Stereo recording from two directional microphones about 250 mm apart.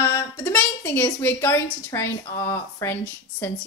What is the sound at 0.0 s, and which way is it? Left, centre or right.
A woman's voice, centre.